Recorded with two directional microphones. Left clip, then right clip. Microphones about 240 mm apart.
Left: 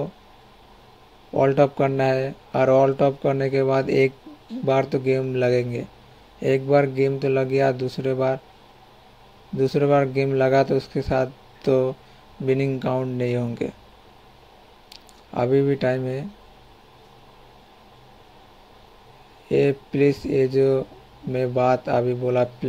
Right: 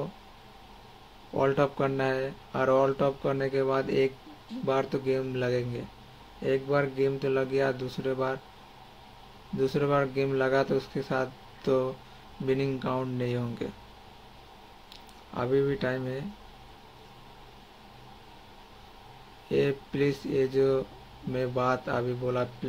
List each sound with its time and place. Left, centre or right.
1.3 s speech: centre
9.6 s speech: centre
14.9 s speech: left
19.5 s speech: centre